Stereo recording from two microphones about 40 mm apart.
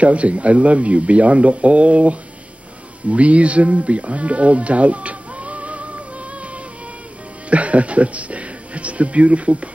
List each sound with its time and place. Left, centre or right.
0.0 s speech: right